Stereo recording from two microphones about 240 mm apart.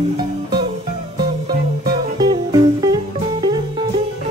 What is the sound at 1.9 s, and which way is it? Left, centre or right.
Music, centre.